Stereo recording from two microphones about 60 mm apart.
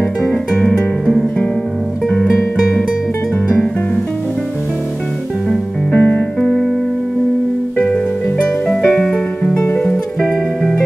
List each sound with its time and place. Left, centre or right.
0.2 s music: centre
5.5 s music: centre
7.8 s music: centre
10.2 s music: centre